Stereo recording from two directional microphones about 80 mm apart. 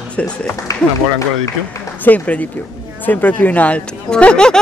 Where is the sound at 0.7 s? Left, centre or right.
Left.